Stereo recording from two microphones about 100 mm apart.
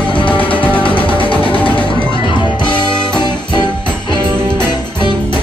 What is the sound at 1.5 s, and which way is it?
Music, 15° left (ahead or behind).